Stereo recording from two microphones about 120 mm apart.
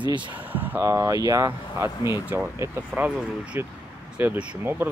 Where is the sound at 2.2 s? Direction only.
20° right (ahead or behind).